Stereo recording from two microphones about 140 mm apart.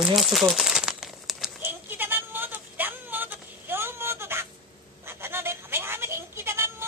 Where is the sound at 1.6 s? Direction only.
15° right (ahead or behind).